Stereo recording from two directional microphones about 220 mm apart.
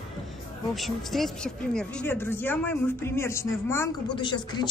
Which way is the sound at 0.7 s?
Centre (ahead or behind).